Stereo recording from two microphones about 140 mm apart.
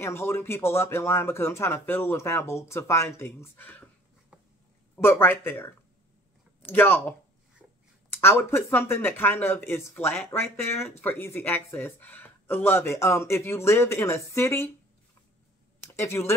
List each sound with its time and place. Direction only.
0.0 s speech: 20° left (ahead or behind)
4.9 s speech: 15° left (ahead or behind)
16.0 s speech: 20° left (ahead or behind)